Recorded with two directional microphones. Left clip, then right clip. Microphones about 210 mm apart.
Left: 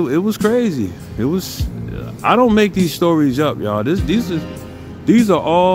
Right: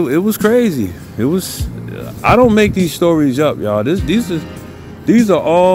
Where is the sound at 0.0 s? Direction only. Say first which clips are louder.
Right 3 dB; centre (ahead or behind).